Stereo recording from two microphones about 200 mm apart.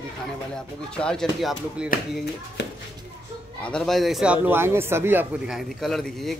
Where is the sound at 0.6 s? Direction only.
5° left (ahead or behind).